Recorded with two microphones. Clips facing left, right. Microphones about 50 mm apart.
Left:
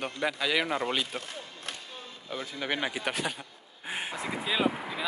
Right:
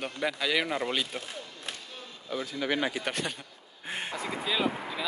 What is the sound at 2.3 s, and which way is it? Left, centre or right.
Speech, centre.